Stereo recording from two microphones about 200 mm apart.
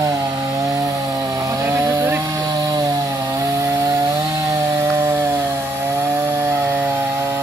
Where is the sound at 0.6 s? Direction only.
15° right (ahead or behind).